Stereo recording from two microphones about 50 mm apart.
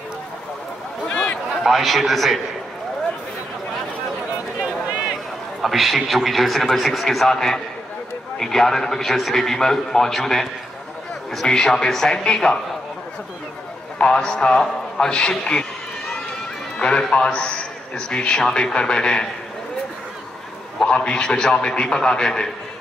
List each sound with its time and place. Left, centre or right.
1.0 s a sound: left
1.6 s a man's voice: centre
5.6 s a man's voice: centre
13.9 s a man's voice: centre
16.7 s a sound: centre
17.1 s a man's voice: left
20.8 s a man's voice: centre